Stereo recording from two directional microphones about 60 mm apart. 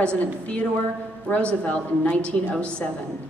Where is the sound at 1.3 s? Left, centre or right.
Left.